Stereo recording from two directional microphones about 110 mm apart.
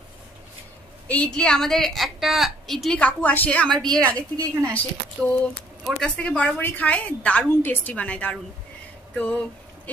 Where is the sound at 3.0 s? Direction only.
10° left (ahead or behind).